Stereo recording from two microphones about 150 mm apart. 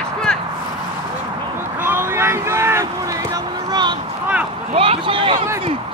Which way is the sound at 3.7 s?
30° right (ahead or behind).